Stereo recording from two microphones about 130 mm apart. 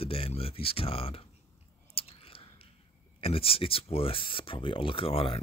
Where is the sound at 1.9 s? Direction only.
45° left (ahead or behind).